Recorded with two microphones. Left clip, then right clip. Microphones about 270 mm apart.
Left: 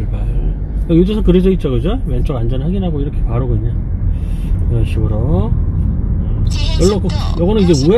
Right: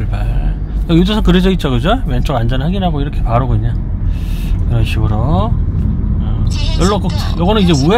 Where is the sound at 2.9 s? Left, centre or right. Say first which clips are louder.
Right 5 dB; right.